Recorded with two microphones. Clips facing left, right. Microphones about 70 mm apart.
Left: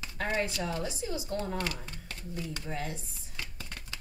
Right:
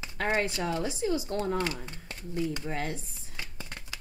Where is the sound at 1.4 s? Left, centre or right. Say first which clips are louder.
Right 4 dB; right.